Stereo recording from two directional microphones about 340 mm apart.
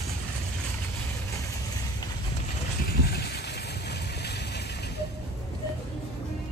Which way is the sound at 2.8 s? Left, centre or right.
Left.